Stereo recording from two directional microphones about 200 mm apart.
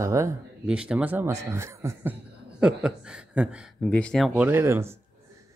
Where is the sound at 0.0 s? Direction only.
15° right (ahead or behind); by 4.3 s 5° left (ahead or behind).